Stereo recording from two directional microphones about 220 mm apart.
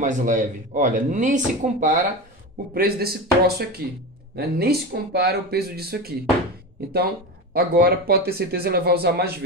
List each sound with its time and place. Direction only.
0.0 s speech: 35° right (ahead or behind)
7.5 s speech: 45° right (ahead or behind)